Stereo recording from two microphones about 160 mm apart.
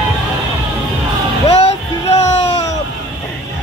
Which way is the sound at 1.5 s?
40° left (ahead or behind).